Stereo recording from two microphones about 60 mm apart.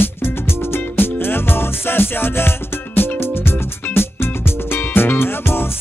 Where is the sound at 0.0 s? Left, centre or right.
Left.